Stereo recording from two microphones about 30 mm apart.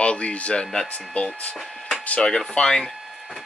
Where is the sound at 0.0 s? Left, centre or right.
Left.